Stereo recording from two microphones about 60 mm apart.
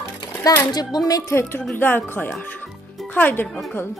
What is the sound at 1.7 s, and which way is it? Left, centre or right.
A woman's voice, left.